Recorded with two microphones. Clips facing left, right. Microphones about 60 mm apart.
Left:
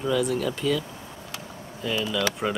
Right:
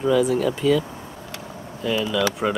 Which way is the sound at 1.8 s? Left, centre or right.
Centre.